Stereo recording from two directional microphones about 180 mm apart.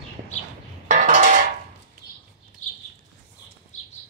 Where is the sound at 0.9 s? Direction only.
45° right (ahead or behind).